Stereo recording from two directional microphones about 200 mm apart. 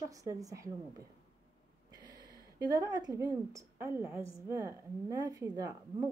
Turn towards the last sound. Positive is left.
turn(degrees=-15)  # may be behind; listen again after turning